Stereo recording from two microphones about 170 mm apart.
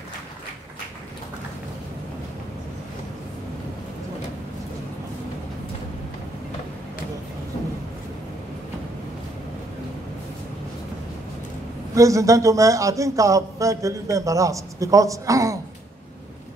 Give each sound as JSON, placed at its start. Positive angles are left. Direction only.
{"t": 11.9, "sound": "a man's voice", "side_deg": -20}